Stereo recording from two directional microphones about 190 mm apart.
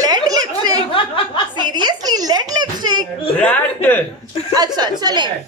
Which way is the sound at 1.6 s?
25° right (ahead or behind).